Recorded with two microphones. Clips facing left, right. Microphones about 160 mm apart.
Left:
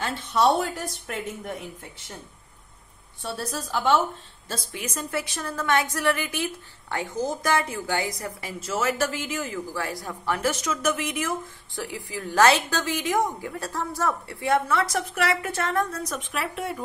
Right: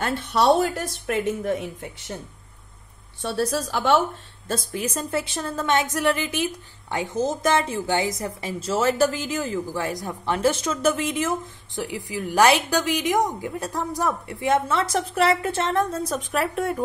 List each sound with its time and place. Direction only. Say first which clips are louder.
0.0 s speech: right 1 dB; 70° right (ahead or behind)
3.2 s speech: right 7 dB; 80° right
4.7 s a woman's voice: right 2 dB; 30° right (ahead or behind)
9.8 s a woman's voice: right 4 dB; 20° right (ahead or behind); by 16.7 s 40° right (ahead or behind)